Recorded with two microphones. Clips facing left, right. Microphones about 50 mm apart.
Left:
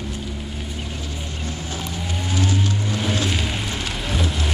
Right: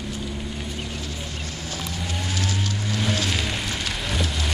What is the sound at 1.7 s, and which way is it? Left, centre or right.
Vehicle, centre.